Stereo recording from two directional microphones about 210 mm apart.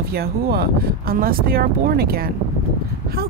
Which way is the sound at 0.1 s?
50° right (ahead or behind).